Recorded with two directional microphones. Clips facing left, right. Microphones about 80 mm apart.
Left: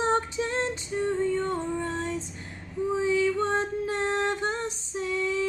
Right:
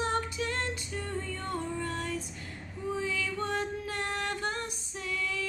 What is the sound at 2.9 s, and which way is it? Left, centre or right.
Music, left.